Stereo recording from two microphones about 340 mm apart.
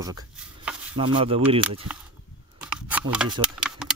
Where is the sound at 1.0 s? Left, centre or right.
Centre.